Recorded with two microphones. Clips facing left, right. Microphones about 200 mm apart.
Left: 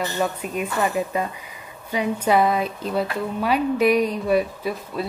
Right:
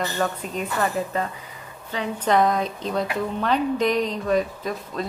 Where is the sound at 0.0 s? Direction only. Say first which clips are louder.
Left 1 dB; 10° left (ahead or behind).